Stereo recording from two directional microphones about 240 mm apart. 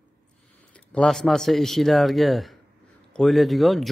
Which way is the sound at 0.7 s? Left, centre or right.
Centre.